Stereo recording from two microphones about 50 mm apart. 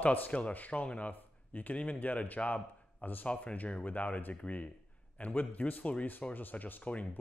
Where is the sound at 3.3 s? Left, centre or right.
Left.